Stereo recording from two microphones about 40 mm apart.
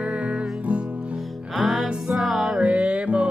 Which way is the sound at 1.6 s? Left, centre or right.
Centre.